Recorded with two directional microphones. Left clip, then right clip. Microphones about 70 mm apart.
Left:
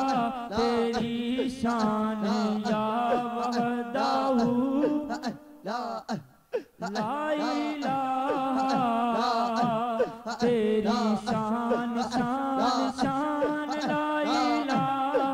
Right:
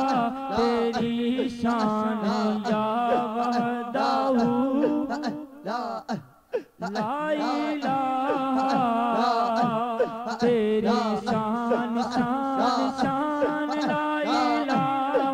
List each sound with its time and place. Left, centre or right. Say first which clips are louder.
0.0 s music: right 3 dB; right
7.0 s music: right 2 dB; right